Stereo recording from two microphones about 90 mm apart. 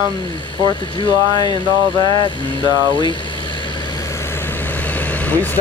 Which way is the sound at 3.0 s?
60° left (ahead or behind).